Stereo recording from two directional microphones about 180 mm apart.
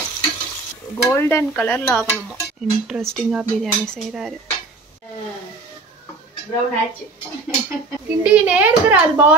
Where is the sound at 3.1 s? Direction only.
Centre (ahead or behind).